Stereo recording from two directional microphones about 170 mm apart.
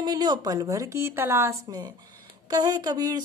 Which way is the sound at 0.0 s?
25° right (ahead or behind).